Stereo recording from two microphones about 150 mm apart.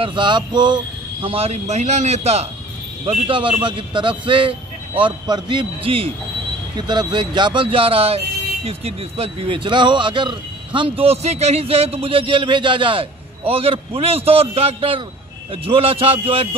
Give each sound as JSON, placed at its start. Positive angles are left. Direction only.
{"t": 0.0, "sound": "speech", "side_deg": -30}
{"t": 3.1, "sound": "speech", "side_deg": -35}